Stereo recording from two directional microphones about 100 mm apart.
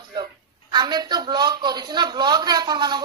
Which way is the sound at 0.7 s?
45° right (ahead or behind).